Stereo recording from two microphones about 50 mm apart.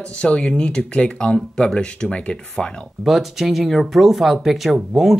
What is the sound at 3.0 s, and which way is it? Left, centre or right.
Speech, centre.